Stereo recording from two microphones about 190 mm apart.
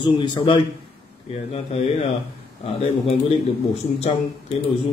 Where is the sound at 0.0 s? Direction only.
25° left (ahead or behind).